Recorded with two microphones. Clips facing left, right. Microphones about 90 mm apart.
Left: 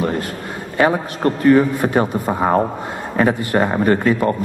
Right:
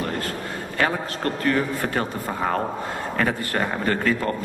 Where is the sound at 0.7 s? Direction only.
20° left (ahead or behind).